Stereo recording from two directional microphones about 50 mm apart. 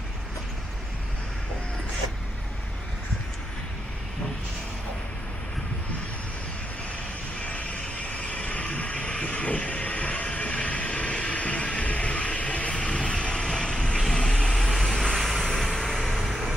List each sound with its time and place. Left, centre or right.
8.1 s vehicle: left; by 16.1 s centre
16.2 s vehicle: centre